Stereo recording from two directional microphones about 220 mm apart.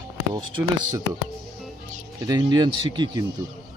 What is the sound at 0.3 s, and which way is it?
Speech, 20° right (ahead or behind).